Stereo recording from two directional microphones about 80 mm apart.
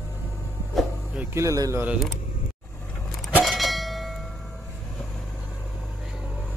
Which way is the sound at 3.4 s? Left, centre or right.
Centre.